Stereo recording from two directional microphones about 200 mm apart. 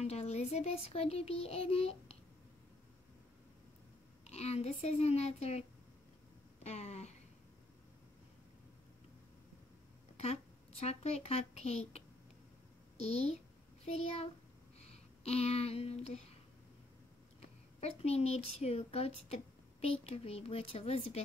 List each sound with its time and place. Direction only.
0.0 s a child's voice: 30° left (ahead or behind)
4.3 s a child's voice: 30° left (ahead or behind)
10.1 s speech: 30° left (ahead or behind)
13.0 s a child's voice: 30° left (ahead or behind)
14.9 s a sound: 30° left (ahead or behind)
17.4 s speech: 30° left (ahead or behind)